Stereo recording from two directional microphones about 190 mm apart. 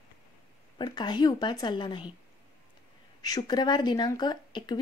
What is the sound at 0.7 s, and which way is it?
Speech, 20° left (ahead or behind).